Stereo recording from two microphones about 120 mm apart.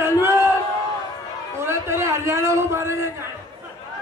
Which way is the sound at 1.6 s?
20° right (ahead or behind).